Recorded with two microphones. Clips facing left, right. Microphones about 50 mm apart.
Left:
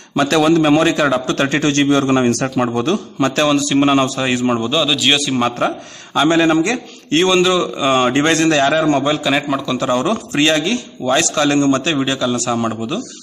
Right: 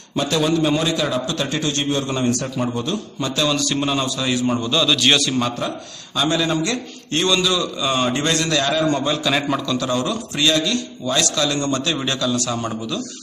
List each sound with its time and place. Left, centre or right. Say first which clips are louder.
0.1 s a man's voice: left 6 dB; left
3.4 s speech: left 5 dB; left
3.8 s a man's voice: left 7 dB; left
4.6 s speech: left 3 dB; left
4.8 s a man's voice: left 1 dB; centre
5.3 s a man's voice: left 5 dB; left
9.2 s a man's voice: left 3 dB; centre
9.8 s a man's voice: left 5 dB; left
12.0 s speech: left 4 dB; left